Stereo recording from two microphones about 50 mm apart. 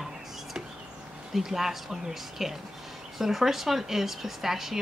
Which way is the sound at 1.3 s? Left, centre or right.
Centre.